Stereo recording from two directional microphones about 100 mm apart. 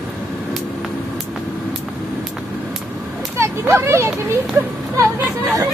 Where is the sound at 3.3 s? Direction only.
30° right (ahead or behind).